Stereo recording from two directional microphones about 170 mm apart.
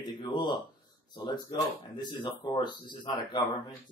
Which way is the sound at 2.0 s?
25° left (ahead or behind).